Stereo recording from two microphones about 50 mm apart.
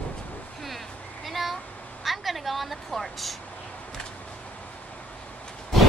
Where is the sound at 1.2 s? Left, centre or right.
Centre.